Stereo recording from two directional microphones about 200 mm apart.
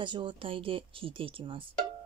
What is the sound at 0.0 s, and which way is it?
Speech, 25° right (ahead or behind).